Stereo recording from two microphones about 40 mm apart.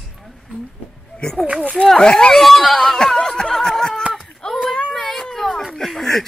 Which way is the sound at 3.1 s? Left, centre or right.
Centre.